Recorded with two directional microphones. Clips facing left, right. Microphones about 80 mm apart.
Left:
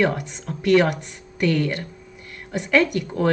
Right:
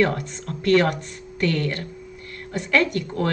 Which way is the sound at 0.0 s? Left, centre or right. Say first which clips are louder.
Even; centre.